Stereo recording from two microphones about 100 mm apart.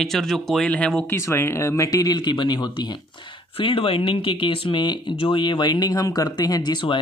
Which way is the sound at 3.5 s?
65° left (ahead or behind).